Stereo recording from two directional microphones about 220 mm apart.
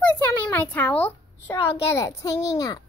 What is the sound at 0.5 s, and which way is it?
A child's voice, 10° left (ahead or behind).